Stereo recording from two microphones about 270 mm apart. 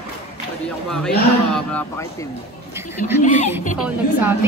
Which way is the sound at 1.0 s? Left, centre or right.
Centre.